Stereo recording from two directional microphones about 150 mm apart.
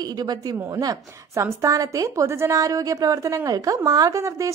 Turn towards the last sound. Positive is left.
turn(degrees=-20)  # may be behind; listen again after turning